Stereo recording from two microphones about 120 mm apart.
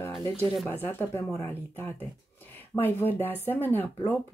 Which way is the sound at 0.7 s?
20° left (ahead or behind).